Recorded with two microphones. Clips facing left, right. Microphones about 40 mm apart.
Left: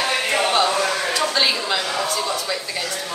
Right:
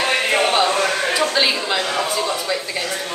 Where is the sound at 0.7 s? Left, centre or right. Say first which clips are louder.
Right 2 dB; right.